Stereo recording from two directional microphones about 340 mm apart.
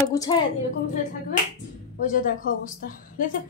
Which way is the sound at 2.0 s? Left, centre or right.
Left.